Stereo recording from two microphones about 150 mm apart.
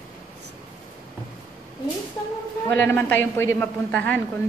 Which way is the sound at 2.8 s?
10° left (ahead or behind).